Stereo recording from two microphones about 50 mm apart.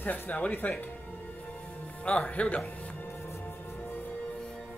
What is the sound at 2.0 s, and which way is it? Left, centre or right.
Speech, left.